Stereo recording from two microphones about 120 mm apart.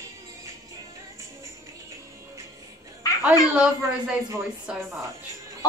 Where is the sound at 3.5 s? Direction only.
10° right (ahead or behind).